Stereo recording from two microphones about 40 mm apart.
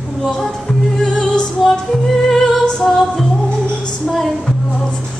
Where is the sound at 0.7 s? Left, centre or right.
Centre.